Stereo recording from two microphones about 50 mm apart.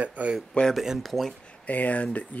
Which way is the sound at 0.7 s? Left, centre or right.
Centre.